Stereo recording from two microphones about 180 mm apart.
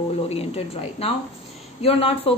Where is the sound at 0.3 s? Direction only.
35° left (ahead or behind).